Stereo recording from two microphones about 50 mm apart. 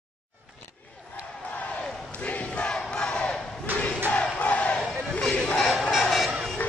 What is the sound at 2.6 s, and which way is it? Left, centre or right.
Crowd, centre.